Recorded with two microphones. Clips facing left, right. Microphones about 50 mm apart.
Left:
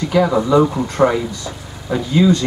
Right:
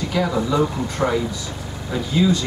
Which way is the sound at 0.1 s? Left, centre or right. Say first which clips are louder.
Left 8 dB; centre.